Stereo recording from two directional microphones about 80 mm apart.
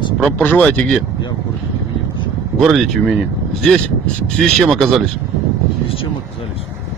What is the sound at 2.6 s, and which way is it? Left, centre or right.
Speech, centre.